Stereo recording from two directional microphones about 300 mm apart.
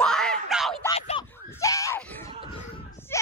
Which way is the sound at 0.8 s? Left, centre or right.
Centre.